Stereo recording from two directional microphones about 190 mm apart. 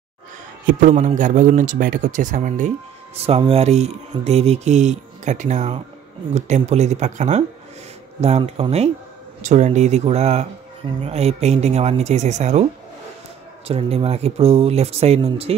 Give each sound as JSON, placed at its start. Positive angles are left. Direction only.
{"t": 0.7, "sound": "speech", "side_deg": -40}
{"t": 3.2, "sound": "speech", "side_deg": -30}
{"t": 13.7, "sound": "speech", "side_deg": -30}